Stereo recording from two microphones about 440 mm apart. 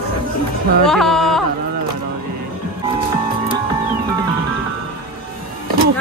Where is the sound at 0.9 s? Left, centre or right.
Centre.